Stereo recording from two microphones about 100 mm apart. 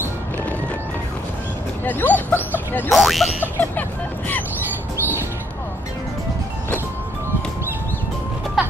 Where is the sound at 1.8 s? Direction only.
20° left (ahead or behind).